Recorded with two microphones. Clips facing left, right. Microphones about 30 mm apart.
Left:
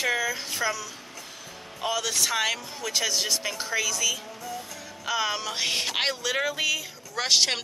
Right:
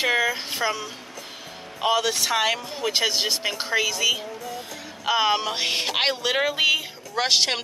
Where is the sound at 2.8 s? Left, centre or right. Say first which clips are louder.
Right 4 dB; right.